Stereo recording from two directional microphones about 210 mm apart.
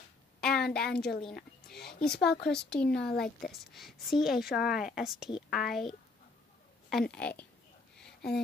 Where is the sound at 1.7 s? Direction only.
50° left (ahead or behind).